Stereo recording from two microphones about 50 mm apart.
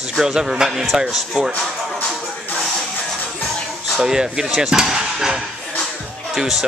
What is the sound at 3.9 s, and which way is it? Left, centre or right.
Speech, centre.